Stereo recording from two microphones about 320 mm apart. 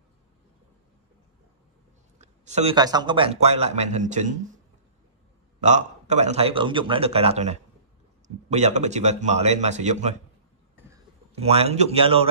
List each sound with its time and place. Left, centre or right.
2.1 s speech: right
5.6 s speech: right
11.3 s speech: centre